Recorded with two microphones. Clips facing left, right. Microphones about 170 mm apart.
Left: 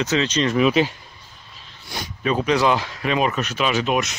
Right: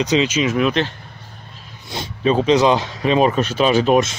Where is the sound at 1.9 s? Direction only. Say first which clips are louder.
Right 5 dB; 25° right (ahead or behind).